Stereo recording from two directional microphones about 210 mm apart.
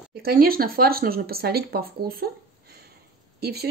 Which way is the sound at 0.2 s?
45° right (ahead or behind).